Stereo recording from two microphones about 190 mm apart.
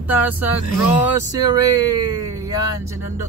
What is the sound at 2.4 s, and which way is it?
Speech, 20° right (ahead or behind).